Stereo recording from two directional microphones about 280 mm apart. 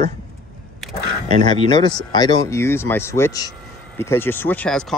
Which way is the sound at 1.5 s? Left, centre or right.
Centre.